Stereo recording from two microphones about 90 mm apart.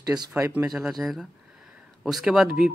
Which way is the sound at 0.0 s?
50° right (ahead or behind).